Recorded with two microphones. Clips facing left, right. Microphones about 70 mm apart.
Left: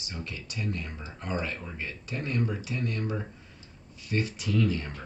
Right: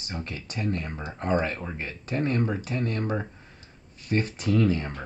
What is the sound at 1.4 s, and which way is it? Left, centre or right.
Speech, right.